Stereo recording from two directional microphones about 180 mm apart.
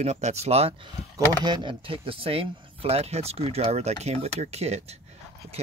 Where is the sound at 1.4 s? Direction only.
25° right (ahead or behind).